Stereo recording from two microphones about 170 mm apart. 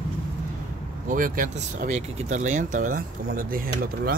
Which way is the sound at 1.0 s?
50° right (ahead or behind).